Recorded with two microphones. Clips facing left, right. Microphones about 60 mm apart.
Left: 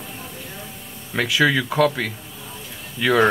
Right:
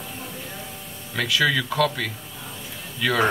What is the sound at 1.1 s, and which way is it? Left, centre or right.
Speech, left.